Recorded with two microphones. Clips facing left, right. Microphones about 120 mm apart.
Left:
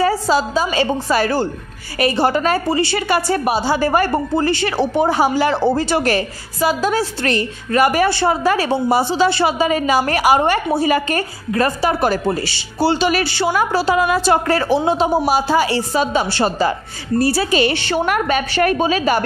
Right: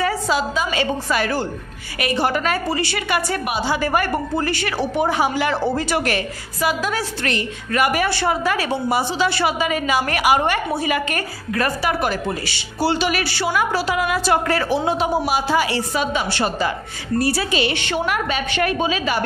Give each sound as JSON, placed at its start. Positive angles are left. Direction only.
{"t": 0.0, "sound": "a woman's voice", "side_deg": 35}
{"t": 18.0, "sound": "a woman's voice", "side_deg": 50}